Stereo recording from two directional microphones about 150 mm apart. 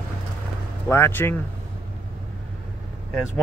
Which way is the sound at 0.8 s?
15° left (ahead or behind).